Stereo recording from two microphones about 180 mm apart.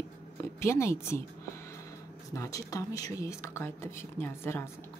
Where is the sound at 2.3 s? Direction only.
20° left (ahead or behind).